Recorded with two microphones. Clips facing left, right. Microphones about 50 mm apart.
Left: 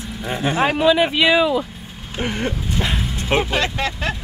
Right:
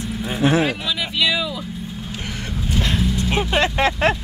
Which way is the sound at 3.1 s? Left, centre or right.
Left.